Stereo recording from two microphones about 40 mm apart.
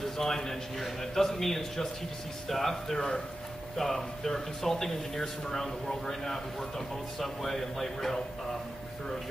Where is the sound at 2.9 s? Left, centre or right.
Centre.